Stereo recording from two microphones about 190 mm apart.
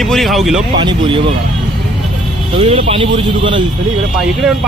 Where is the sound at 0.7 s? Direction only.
25° right (ahead or behind).